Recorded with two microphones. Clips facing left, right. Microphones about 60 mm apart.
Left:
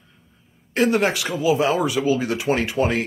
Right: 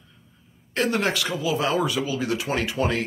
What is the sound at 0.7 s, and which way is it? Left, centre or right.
Speech, centre.